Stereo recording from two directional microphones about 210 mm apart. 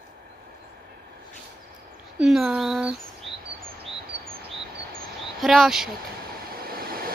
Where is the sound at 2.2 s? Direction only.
5° right (ahead or behind).